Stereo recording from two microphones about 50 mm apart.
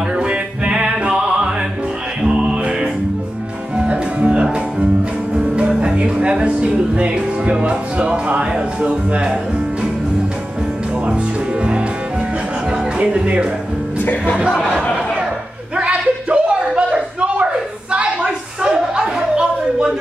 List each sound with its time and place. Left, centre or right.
0.1 s music: right
12.9 s speech: right
15.7 s a sound: right